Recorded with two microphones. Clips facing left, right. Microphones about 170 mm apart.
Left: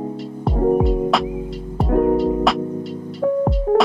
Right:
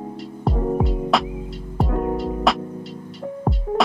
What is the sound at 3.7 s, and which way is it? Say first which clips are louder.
Music: left 5 dB; 65° left (ahead or behind).